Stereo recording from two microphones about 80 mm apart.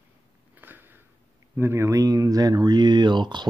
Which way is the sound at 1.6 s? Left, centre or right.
Right.